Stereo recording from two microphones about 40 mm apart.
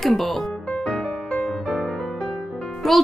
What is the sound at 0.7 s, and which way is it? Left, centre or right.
Music, left.